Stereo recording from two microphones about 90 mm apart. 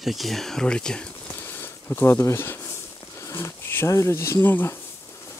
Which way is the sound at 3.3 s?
30° left (ahead or behind).